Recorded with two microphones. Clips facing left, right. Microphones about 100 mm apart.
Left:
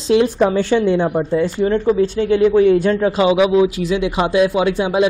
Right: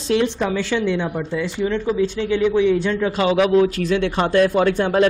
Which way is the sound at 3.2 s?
15° left (ahead or behind).